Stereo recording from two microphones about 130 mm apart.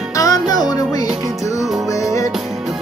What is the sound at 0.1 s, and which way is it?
Music, 25° left (ahead or behind).